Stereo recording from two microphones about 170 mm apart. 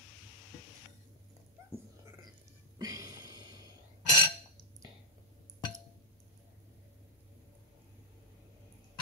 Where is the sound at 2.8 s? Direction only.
20° right (ahead or behind).